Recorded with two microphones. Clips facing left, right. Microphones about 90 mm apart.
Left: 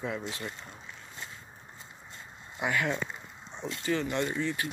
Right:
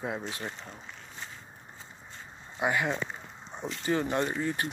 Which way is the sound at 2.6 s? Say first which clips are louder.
Right 1 dB; 25° right (ahead or behind).